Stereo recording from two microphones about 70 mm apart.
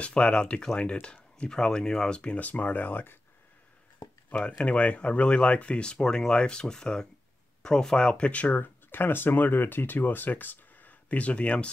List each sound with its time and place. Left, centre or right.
0.0 s speech: centre
4.3 s speech: centre